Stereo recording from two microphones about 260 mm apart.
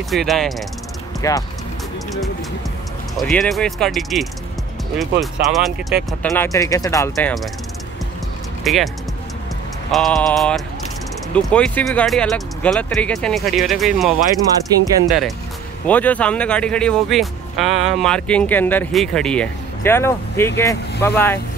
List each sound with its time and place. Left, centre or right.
0.1 s speech: centre
1.2 s speech: centre
3.2 s speech: centre
8.6 s speech: centre